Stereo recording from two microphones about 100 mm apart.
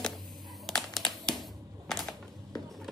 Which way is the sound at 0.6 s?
5° left (ahead or behind).